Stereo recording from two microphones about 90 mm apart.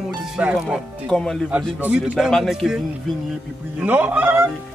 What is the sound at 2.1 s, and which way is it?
Speech, centre (ahead or behind).